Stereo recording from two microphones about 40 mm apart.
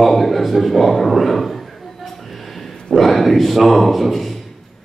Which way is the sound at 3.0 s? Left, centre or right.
Centre.